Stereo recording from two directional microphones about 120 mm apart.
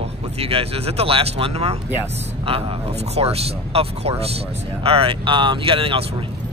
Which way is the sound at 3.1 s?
60° right (ahead or behind).